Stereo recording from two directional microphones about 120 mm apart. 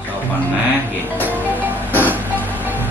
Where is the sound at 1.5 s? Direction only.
15° right (ahead or behind).